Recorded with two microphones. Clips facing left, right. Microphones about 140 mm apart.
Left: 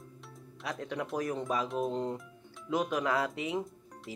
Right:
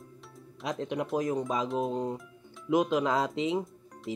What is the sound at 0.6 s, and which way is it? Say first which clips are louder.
Speech: right 4 dB; 20° right (ahead or behind).